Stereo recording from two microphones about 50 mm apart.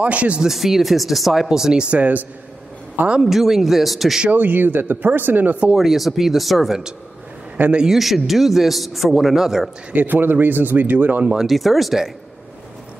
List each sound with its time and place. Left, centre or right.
0.0 s speech: right
0.4 s a man's voice: centre
2.0 s speech: right
3.2 s a man's voice: centre
4.3 s speech: right
5.8 s a man's voice: centre
7.9 s a man's voice: centre
9.9 s speech: right
11.4 s a man's voice: centre